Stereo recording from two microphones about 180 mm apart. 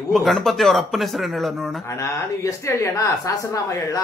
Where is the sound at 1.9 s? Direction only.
15° left (ahead or behind).